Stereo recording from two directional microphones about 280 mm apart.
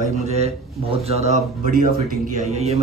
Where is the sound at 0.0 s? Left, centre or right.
Right.